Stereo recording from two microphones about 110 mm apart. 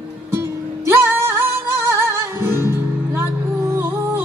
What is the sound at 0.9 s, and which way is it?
Music, 25° right (ahead or behind).